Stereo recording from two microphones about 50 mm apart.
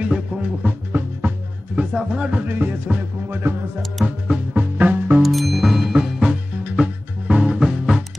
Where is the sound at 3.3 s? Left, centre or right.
Right.